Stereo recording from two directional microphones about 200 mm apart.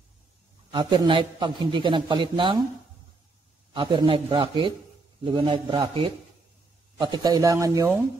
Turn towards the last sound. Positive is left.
turn(degrees=-15)  # may be behind; listen again after turning